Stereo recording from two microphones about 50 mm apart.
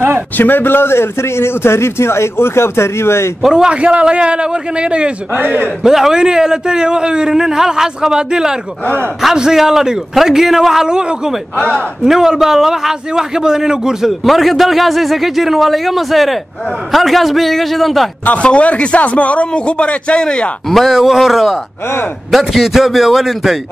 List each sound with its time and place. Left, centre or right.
0.4 s speech: left
3.4 s a man's voice: centre
5.3 s a man's voice: right
5.9 s a man's voice: centre
14.2 s a man's voice: centre
18.2 s a man's voice: left
20.7 s a man's voice: centre